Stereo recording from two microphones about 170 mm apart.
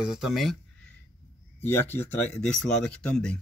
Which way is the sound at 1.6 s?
10° left (ahead or behind).